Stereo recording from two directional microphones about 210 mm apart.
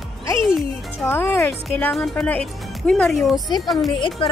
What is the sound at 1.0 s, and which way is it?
Speech, 10° left (ahead or behind).